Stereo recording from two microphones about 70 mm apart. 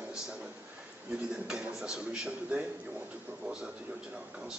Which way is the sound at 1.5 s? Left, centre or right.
Centre.